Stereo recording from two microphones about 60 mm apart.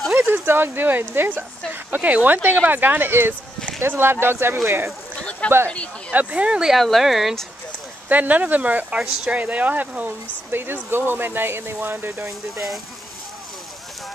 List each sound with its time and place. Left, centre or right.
0.2 s speech: right
4.6 s speech: right
5.7 s speech: centre
6.1 s speech: centre
6.8 s speech: centre
8.1 s speech: right
12.3 s speech: centre